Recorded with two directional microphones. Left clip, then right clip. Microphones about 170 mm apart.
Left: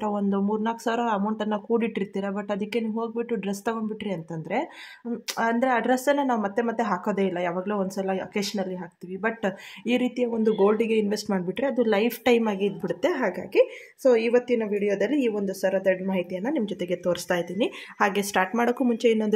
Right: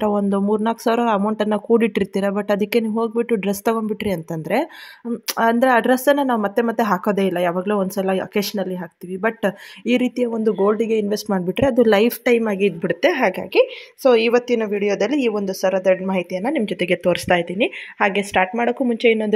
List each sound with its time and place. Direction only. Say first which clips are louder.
0.0 s speech: right 7 dB; 35° right (ahead or behind); by 11.3 s 20° right (ahead or behind)
11.3 s speech: right 9 dB; 35° right (ahead or behind)
12.4 s a woman's voice: right 7 dB; 20° right (ahead or behind)
16.7 s speech: right 9 dB; 20° left (ahead or behind)
17.0 s a woman's voice: right 7 dB; 25° right (ahead or behind)
17.6 s speech: right 5 dB; 10° right (ahead or behind)